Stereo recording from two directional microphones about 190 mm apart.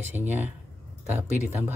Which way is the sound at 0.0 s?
10° right (ahead or behind).